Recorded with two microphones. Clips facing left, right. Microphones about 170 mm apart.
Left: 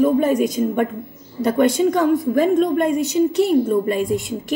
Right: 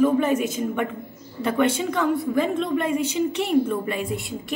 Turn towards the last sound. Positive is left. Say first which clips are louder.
# left 7 dB
turn(degrees=45)  # may be behind; listen again after turning